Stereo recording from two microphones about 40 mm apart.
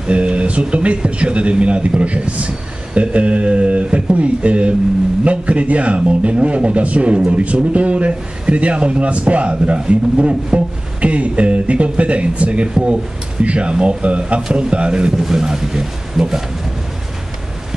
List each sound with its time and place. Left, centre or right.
0.0 s speech: right
15.2 s a man's voice: centre